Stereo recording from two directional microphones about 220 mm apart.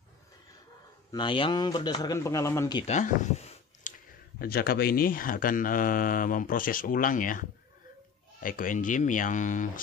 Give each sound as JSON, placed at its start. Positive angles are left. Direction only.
{"t": 1.1, "sound": "a man's voice", "side_deg": 20}
{"t": 2.9, "sound": "a sound", "side_deg": 30}
{"t": 4.4, "sound": "speech", "side_deg": 45}